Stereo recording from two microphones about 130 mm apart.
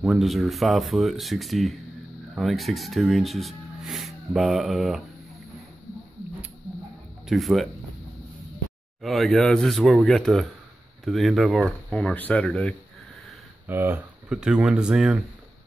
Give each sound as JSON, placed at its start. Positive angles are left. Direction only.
{"t": 0.0, "sound": "speech", "side_deg": 0}
{"t": 7.2, "sound": "speech", "side_deg": 0}
{"t": 9.0, "sound": "speech", "side_deg": 0}
{"t": 13.7, "sound": "speech", "side_deg": -15}
{"t": 14.3, "sound": "speech", "side_deg": -5}